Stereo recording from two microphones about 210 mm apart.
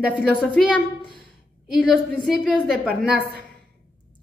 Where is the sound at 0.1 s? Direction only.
5° left (ahead or behind).